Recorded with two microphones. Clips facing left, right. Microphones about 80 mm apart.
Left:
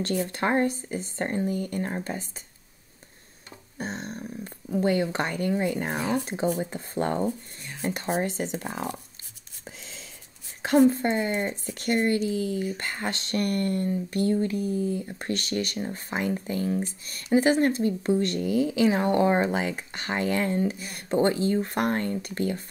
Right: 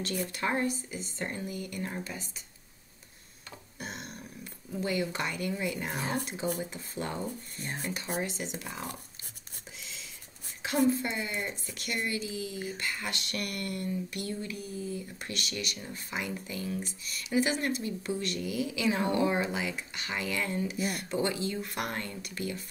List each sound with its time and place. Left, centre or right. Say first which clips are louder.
0.0 s speech: left 6 dB; left
3.7 s a sound: left 8 dB; left
4.6 s speech: left 8 dB; left
9.7 s whispering: left 4 dB; left
10.6 s speech: left 7 dB; left